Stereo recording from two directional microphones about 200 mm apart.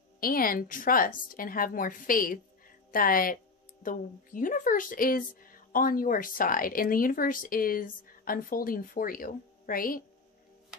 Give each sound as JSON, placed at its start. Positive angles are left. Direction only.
{"t": 0.2, "sound": "speech", "side_deg": 45}